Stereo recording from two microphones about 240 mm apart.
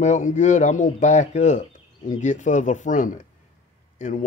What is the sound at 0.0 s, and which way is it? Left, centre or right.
Speech, left.